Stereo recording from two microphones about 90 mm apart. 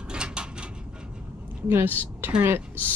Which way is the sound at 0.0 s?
10° right (ahead or behind).